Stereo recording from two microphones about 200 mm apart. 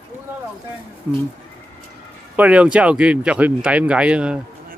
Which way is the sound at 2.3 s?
5° right (ahead or behind).